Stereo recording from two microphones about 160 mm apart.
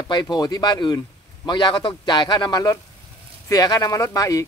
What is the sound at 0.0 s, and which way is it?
Speech, 25° left (ahead or behind).